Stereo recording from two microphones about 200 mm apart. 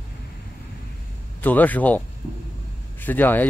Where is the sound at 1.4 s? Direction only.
10° left (ahead or behind).